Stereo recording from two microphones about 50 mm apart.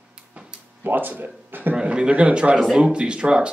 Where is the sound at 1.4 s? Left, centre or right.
Right.